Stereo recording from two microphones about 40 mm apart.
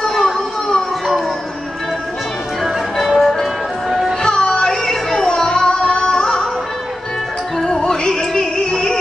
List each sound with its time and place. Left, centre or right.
0.0 s a sound: centre
2.6 s music: centre
4.2 s music: centre
4.6 s music: centre
7.5 s music: centre